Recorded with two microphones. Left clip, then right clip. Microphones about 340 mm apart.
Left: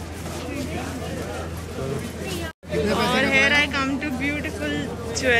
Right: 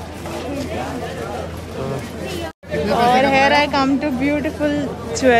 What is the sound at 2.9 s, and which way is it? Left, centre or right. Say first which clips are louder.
Speech: right 7 dB; centre.